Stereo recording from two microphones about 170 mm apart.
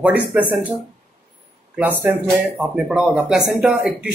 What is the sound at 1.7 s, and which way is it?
Speech, 10° right (ahead or behind).